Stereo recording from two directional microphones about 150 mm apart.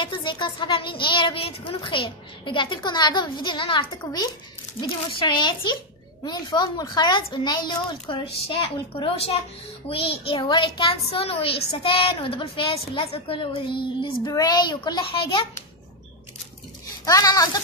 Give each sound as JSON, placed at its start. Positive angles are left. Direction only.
{"t": 0.0, "sound": "a child's voice", "side_deg": 30}
{"t": 4.0, "sound": "a child's voice", "side_deg": 25}
{"t": 17.0, "sound": "a child's voice", "side_deg": 25}